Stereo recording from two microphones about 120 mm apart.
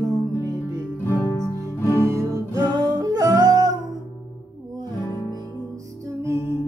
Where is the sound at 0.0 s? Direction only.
30° right (ahead or behind).